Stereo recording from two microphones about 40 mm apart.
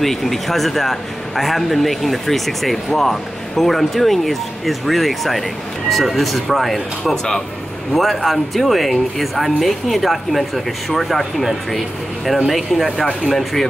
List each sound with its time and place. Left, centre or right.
0.0 s speech: centre